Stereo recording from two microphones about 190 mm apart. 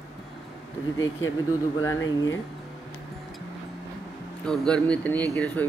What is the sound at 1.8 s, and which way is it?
Speech, 15° left (ahead or behind).